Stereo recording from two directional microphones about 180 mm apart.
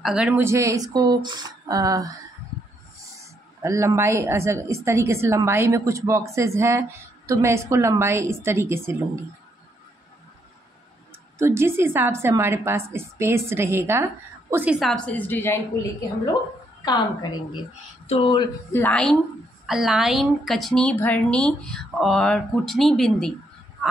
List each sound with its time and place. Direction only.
0.0 s speech: 5° right (ahead or behind)
3.6 s a woman's voice: 15° right (ahead or behind)
11.3 s a woman's voice: 15° right (ahead or behind); by 15.8 s 15° left (ahead or behind)
16.8 s a woman's voice: 25° left (ahead or behind)
18.0 s speech: 35° left (ahead or behind)
18.7 s a woman's voice: 10° left (ahead or behind)